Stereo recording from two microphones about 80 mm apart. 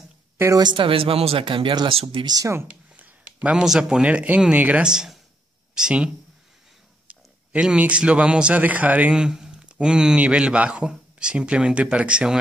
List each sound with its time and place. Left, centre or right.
0.6 s speech: right
2.4 s speech: right
3.0 s a sound: right
3.5 s speech: centre